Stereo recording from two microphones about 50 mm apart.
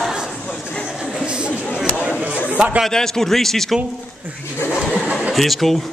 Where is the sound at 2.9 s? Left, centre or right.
Centre.